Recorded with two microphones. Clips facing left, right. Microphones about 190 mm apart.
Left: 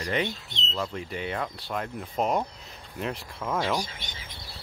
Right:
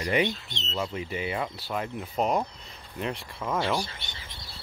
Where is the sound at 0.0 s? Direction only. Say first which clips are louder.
Right 3 dB; 10° right (ahead or behind).